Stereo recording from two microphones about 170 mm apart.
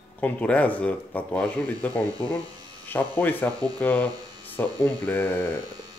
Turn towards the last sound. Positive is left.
turn(degrees=10)  # may be behind; listen again after turning